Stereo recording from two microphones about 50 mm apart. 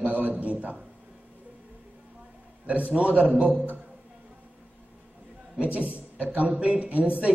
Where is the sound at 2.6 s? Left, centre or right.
Right.